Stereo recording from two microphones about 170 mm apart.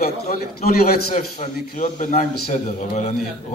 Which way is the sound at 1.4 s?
45° left (ahead or behind).